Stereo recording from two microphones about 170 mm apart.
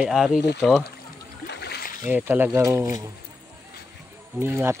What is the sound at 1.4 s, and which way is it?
Splash, 75° left (ahead or behind).